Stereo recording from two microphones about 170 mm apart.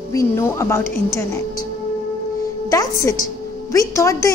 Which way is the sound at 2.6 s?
20° left (ahead or behind).